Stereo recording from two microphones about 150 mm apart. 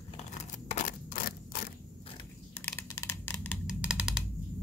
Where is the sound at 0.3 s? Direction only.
55° left (ahead or behind); by 1.7 s 85° left.